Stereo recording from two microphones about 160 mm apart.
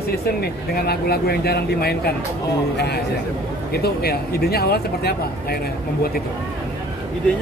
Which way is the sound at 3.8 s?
75° left (ahead or behind).